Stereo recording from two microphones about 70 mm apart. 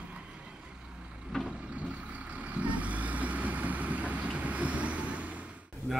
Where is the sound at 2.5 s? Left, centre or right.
Right.